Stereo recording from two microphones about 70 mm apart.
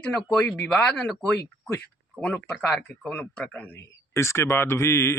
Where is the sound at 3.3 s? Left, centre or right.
Centre.